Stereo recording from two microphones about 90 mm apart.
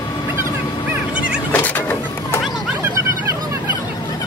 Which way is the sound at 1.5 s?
20° left (ahead or behind).